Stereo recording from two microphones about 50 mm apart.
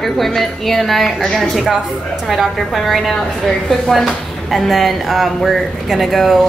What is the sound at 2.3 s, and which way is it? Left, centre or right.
Speech, centre.